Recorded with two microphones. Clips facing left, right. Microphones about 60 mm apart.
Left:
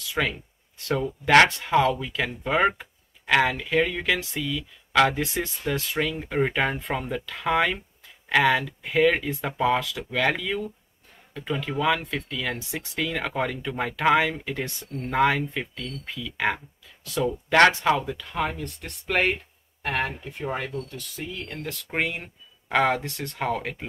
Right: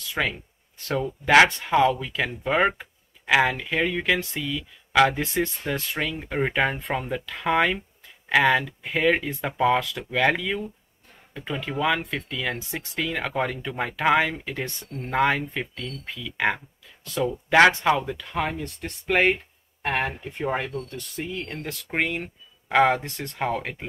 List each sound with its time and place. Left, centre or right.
0.1 s speech: centre
21.9 s speech: centre
22.2 s a sound: centre
22.9 s speech: centre